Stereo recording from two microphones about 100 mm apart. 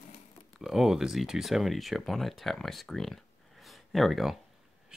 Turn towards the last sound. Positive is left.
turn(degrees=0)  # may be behind; listen again after turning